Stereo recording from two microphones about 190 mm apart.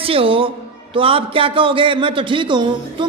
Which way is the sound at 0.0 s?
30° right (ahead or behind).